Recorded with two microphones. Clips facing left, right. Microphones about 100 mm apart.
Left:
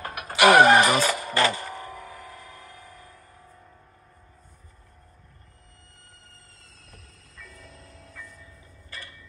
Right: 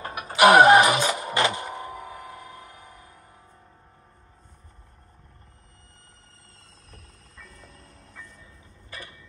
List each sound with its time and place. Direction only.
0.0 s music: centre (ahead or behind)
7.5 s train: centre (ahead or behind)
8.9 s a sound: 10° right (ahead or behind)